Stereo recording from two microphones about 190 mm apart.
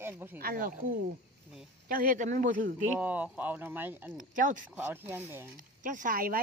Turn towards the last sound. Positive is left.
turn(degrees=-45)  # may be behind; listen again after turning